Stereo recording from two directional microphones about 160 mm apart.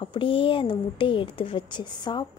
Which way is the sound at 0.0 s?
35° left (ahead or behind).